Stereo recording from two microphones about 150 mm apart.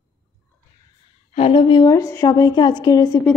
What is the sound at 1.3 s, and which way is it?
A woman's voice, 40° left (ahead or behind).